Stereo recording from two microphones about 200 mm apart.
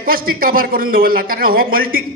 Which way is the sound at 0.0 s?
45° right (ahead or behind).